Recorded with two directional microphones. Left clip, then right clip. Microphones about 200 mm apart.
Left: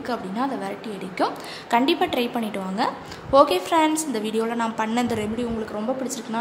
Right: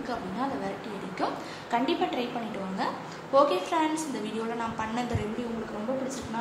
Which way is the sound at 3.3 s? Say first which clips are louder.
Left 6 dB; 55° left (ahead or behind).